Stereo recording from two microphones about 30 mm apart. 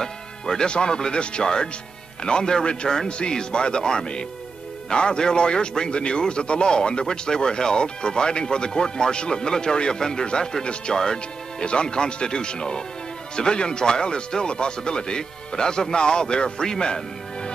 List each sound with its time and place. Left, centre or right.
0.0 s music: centre
0.7 s a man's voice: left